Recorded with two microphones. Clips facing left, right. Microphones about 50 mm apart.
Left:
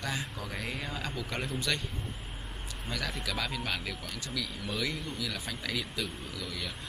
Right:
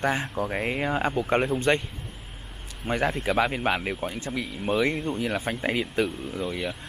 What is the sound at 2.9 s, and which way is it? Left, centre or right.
Speech, right.